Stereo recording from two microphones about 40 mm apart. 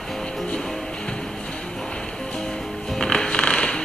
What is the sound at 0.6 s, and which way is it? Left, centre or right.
Music, centre.